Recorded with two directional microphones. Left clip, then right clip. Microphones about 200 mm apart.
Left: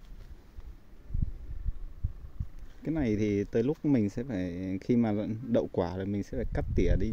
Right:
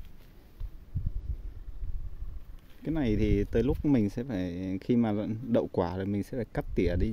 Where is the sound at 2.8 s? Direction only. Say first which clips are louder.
Even; centre (ahead or behind).